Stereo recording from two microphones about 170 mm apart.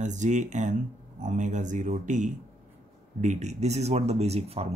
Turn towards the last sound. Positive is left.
turn(degrees=-35)  # may be behind; listen again after turning